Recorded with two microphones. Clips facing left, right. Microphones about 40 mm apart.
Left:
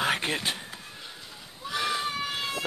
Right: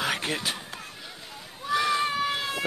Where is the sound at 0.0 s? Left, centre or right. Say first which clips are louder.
Left 1 dB; centre.